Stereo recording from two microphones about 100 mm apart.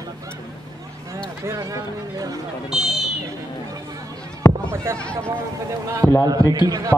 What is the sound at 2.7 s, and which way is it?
Speech, 5° right (ahead or behind).